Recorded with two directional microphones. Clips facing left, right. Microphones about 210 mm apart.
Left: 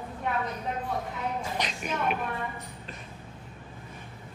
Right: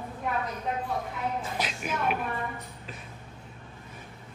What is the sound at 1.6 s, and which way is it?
Speech, 5° right (ahead or behind).